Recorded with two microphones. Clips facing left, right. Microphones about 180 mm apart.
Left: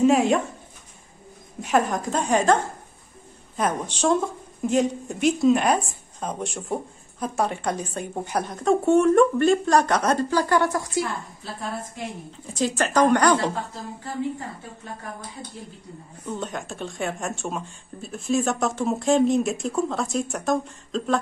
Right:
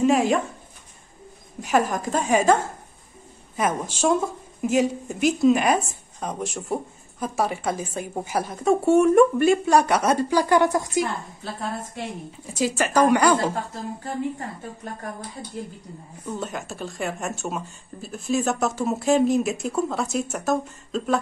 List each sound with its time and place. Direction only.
0.0 s speech: centre (ahead or behind)
1.6 s speech: centre (ahead or behind); by 11.1 s 20° right (ahead or behind)
12.5 s a woman's voice: 5° right (ahead or behind)
16.3 s speech: centre (ahead or behind)